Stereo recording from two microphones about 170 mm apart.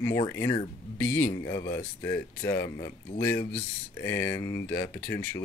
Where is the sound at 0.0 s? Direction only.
20° left (ahead or behind).